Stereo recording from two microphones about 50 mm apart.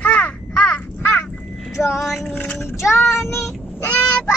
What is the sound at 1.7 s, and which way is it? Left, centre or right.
Female singing, left.